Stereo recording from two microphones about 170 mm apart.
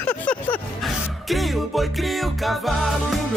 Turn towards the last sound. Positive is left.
turn(degrees=0)  # may be behind; listen again after turning